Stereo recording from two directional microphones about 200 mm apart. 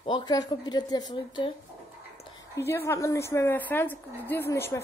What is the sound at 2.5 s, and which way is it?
A woman's voice, 15° left (ahead or behind).